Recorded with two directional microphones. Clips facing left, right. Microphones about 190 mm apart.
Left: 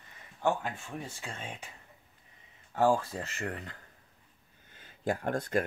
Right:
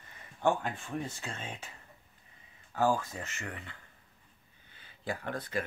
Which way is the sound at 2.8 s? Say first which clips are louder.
Left 3 dB; 30° left (ahead or behind).